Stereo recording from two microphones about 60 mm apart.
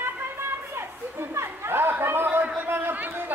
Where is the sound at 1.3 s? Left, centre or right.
Right.